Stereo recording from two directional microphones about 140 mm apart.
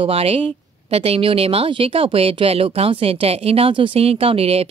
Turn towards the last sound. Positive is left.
turn(degrees=-45)  # may be behind; listen again after turning